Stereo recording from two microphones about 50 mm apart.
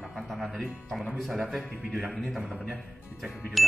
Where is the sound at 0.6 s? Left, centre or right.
Centre.